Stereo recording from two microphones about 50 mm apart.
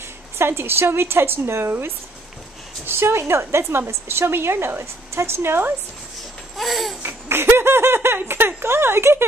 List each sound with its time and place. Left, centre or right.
0.4 s speech: right
6.5 s babbling: centre
7.0 s speech: right